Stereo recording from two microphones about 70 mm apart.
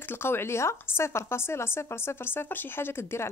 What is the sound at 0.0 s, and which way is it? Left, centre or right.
A woman's voice, left.